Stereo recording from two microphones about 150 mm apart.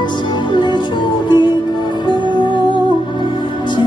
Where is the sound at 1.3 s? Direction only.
30° left (ahead or behind).